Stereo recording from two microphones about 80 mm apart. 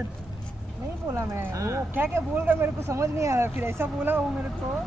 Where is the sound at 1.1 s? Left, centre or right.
Right.